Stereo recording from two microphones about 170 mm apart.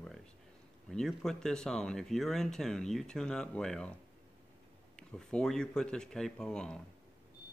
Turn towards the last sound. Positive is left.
turn(degrees=5)  # may be behind; listen again after turning